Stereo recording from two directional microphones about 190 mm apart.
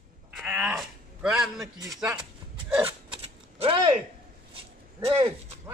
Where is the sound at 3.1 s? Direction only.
30° right (ahead or behind).